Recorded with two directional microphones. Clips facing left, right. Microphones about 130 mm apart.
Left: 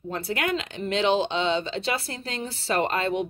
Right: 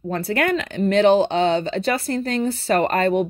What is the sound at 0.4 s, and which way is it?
Speech, 55° right (ahead or behind).